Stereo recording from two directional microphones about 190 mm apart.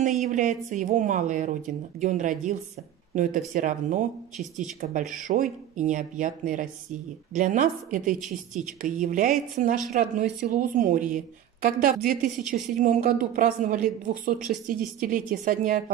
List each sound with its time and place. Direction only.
0.2 s a woman's voice: 40° right (ahead or behind)